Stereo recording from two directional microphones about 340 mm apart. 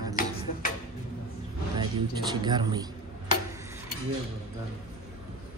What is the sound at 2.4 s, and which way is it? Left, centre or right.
Speech, centre.